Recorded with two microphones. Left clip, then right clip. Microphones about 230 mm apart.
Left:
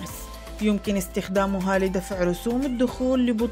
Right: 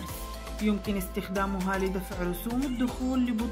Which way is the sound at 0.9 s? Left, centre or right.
Left.